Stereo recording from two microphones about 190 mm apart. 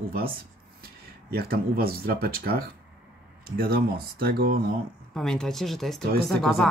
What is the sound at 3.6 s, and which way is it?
Speech, 55° right (ahead or behind).